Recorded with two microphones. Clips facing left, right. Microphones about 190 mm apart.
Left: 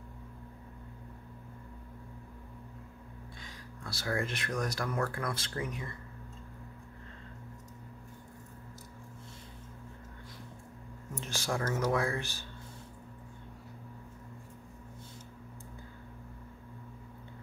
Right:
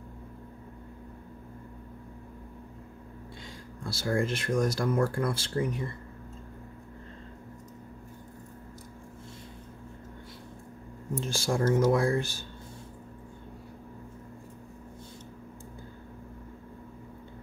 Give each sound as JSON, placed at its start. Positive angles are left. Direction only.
{"t": 3.8, "sound": "speech", "side_deg": -30}
{"t": 11.1, "sound": "speech", "side_deg": -30}